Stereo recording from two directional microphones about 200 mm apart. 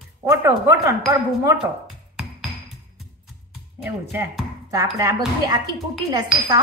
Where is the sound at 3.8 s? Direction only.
10° right (ahead or behind).